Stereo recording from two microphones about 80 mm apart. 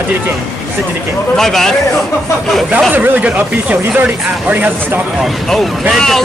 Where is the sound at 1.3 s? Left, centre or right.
Centre.